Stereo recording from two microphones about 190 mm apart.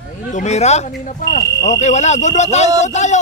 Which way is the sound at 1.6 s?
35° left (ahead or behind).